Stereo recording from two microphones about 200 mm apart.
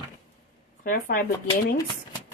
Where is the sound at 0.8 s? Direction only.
45° left (ahead or behind).